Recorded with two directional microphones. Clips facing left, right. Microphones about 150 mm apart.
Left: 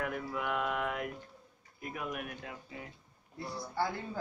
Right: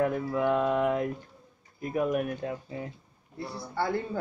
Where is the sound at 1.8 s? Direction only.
35° right (ahead or behind).